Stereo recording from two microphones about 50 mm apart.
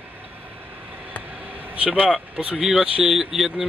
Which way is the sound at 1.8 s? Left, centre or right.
Right.